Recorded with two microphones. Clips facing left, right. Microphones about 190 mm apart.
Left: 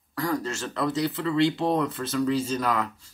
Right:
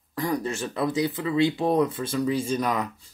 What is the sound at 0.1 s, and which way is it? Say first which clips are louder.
Speech: right 1 dB; 15° right (ahead or behind).